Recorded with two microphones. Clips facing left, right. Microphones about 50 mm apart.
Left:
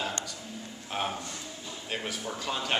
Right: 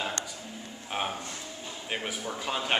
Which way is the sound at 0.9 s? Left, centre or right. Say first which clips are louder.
Even; centre.